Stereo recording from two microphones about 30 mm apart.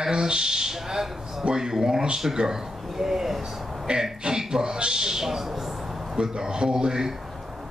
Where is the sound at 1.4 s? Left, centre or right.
Right; by 3.4 s centre.